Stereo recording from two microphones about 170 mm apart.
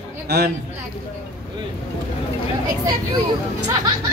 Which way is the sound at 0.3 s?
75° right (ahead or behind).